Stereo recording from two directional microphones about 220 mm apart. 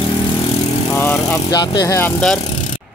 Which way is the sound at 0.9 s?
10° left (ahead or behind).